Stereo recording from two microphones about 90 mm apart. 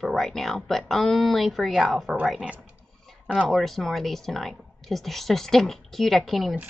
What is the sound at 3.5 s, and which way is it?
A woman's voice, centre (ahead or behind).